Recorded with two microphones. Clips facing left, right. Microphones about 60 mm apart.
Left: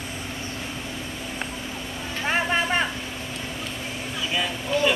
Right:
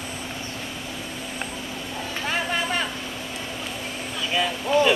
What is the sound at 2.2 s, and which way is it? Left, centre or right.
Vehicle, left.